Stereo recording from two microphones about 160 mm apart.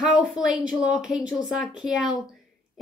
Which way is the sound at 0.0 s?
5° right (ahead or behind).